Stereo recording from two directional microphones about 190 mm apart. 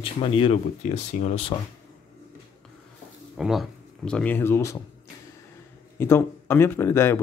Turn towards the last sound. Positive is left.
turn(degrees=15)  # may be behind; listen again after turning